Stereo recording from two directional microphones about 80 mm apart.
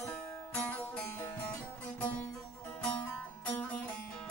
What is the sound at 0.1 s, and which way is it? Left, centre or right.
Music, centre.